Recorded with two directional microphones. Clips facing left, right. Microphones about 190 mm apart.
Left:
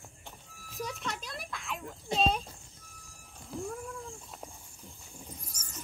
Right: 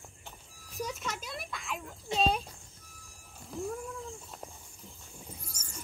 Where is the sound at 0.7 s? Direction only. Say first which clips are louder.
Right 1 dB; centre (ahead or behind).